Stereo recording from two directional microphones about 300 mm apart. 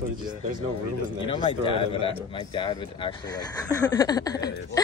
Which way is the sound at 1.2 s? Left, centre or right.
Centre.